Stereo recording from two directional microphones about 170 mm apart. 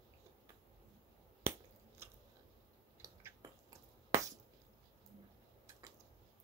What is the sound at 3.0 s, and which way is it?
Chewing, 20° right (ahead or behind).